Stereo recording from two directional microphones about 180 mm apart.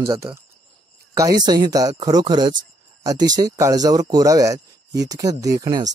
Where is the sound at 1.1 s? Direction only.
20° right (ahead or behind).